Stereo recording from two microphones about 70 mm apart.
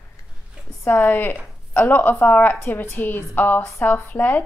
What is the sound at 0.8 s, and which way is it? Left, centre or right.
Speech, left.